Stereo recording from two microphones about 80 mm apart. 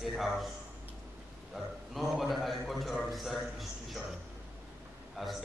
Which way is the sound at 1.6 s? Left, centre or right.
Centre.